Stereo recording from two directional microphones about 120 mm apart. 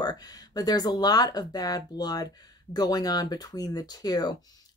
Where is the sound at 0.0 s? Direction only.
35° left (ahead or behind).